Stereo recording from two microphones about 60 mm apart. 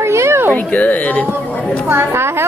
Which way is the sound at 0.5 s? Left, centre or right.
Left.